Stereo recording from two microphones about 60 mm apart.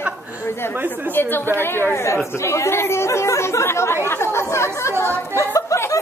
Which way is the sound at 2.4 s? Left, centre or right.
Left.